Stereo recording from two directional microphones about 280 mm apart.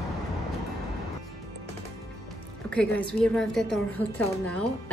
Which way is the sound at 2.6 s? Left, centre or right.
Centre.